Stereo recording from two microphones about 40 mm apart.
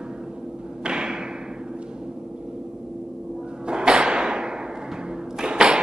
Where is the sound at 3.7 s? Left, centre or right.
Right.